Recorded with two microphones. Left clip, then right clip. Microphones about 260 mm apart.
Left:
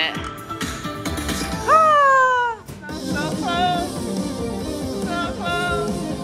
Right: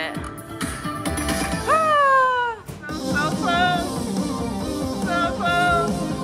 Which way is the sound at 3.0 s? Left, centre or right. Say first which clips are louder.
Right 2 dB; centre.